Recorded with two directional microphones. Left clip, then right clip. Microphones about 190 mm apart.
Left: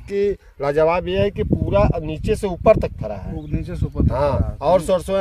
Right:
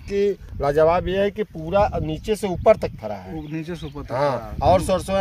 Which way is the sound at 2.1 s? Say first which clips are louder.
Left 2 dB; 10° left (ahead or behind).